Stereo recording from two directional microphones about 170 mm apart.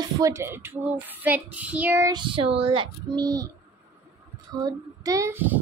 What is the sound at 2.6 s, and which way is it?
Speech, 30° right (ahead or behind).